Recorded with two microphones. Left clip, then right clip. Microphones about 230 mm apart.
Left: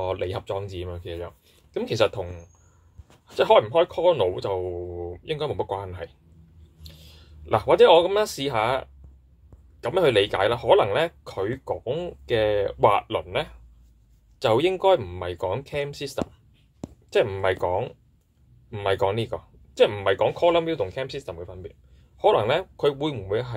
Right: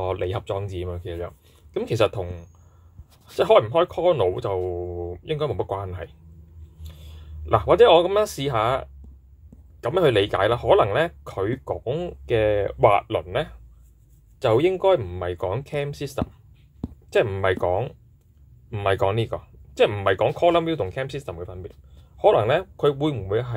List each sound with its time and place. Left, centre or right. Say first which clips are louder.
0.0 s speech: right 1 dB; centre